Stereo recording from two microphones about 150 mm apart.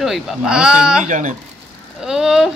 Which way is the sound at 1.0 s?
55° right (ahead or behind).